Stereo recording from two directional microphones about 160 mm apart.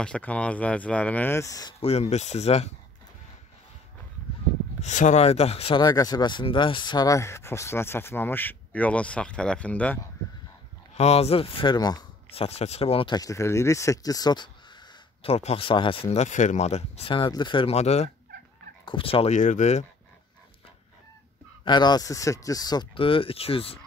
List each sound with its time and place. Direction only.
0.0 s speech: 5° left (ahead or behind); by 1.8 s 25° left (ahead or behind)
1.8 s speech: 40° left (ahead or behind)
4.8 s speech: 50° left (ahead or behind)
5.8 s speech: 25° left (ahead or behind); by 9.9 s 10° left (ahead or behind)
11.0 s speech: 40° left (ahead or behind); by 12.1 s 25° left (ahead or behind)
12.3 s speech: 40° left (ahead or behind)
15.3 s speech: 40° left (ahead or behind)
21.6 s speech: 25° left (ahead or behind)